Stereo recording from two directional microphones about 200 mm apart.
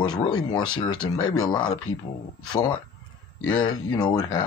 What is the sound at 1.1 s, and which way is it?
Speech, 90° left.